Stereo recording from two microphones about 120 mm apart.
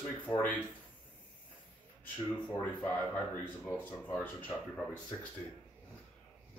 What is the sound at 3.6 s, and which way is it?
A man's voice, 15° left (ahead or behind).